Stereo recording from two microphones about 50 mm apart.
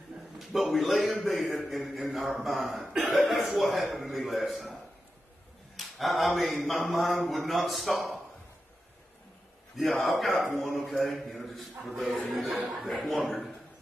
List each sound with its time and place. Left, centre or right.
0.4 s a man's voice: centre
5.8 s a man's voice: centre
10.0 s a man's voice: centre